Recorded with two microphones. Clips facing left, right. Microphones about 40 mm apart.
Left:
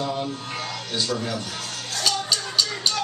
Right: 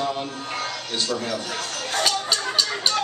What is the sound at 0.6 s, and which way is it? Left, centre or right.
Music, centre.